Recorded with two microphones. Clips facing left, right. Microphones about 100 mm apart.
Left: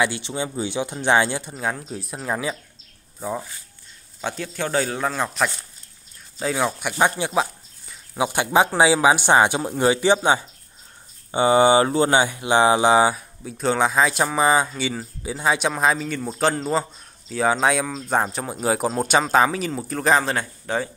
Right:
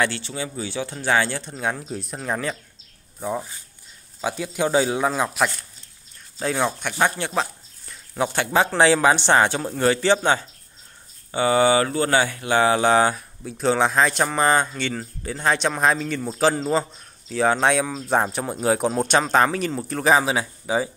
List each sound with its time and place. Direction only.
0.0 s speech: 15° left (ahead or behind)
1.5 s speech: centre (ahead or behind)
13.4 s speech: centre (ahead or behind)